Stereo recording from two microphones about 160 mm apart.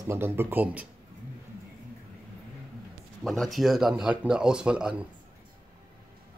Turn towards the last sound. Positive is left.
turn(degrees=-5)  # may be behind; listen again after turning